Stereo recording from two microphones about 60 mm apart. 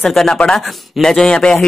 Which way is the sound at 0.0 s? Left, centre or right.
Centre.